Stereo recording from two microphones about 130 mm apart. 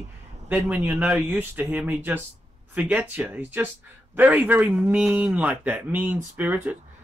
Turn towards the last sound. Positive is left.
turn(degrees=-15)  # may be behind; listen again after turning